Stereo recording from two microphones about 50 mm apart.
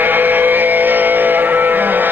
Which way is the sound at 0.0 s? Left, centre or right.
Right.